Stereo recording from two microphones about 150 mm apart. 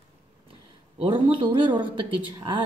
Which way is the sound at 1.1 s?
35° right (ahead or behind).